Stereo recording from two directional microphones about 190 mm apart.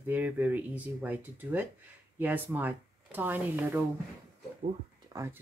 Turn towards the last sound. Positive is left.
turn(degrees=-15)  # may be behind; listen again after turning